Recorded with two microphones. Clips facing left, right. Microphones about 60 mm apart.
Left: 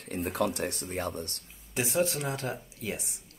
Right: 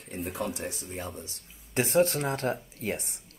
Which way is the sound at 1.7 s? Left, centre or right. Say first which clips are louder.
Right 4 dB; right.